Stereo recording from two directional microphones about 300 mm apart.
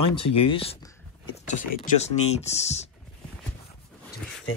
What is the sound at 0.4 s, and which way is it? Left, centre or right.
Speech, centre.